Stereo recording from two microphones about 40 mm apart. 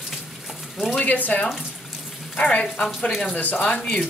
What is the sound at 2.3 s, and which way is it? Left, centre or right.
Speech, left.